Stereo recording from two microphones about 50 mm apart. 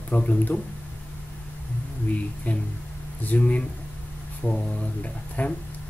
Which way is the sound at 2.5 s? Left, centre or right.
Left.